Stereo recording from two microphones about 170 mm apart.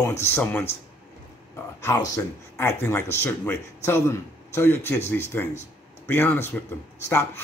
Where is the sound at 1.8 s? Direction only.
15° left (ahead or behind).